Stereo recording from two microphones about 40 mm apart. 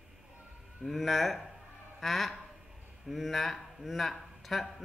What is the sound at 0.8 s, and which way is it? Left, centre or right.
A man's voice, centre.